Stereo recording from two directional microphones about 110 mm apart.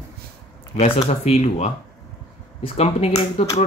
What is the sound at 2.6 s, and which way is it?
Speech, 70° left (ahead or behind).